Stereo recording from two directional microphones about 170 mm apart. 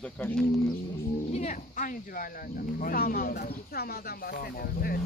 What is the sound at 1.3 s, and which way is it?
Speech, 45° left (ahead or behind).